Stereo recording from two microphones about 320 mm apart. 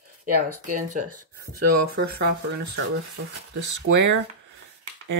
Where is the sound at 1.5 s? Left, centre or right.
Right.